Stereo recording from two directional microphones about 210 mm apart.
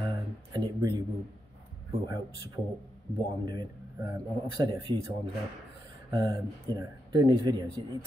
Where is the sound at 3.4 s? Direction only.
20° right (ahead or behind).